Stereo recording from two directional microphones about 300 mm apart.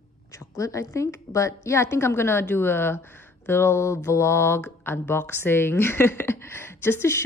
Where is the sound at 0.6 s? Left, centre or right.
Centre.